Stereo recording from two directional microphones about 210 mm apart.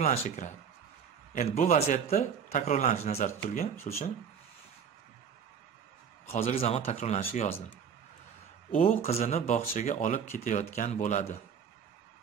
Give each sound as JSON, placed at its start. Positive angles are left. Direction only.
{"t": 0.0, "sound": "a man's voice", "side_deg": 35}
{"t": 6.3, "sound": "a man's voice", "side_deg": 30}
{"t": 9.0, "sound": "a man's voice", "side_deg": 30}